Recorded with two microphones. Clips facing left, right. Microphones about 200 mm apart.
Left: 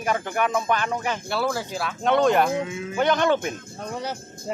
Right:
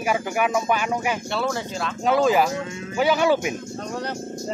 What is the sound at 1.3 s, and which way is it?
Speech, 5° left (ahead or behind).